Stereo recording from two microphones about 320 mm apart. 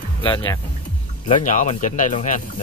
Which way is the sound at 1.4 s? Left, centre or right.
Left.